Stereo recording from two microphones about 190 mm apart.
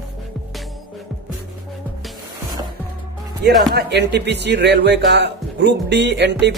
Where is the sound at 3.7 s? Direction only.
60° right (ahead or behind).